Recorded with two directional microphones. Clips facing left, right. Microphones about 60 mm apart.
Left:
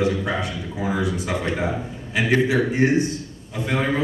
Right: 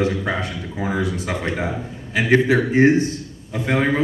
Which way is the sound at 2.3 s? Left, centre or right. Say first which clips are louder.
Right 3 dB; right.